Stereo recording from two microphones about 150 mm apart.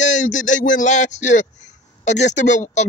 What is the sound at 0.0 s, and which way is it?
Speech, 55° left (ahead or behind).